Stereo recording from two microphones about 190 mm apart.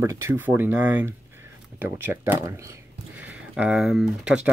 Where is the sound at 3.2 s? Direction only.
5° right (ahead or behind).